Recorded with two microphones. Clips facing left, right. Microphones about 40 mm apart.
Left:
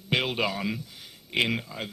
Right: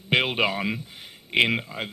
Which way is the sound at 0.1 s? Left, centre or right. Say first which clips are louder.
Right 4 dB; right.